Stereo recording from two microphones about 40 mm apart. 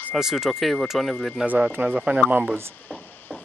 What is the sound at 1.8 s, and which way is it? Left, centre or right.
Speech, right.